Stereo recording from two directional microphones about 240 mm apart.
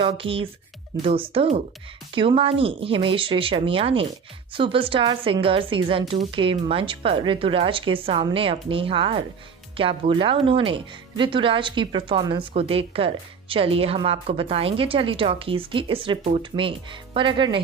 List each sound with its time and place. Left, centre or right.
0.0 s speech: right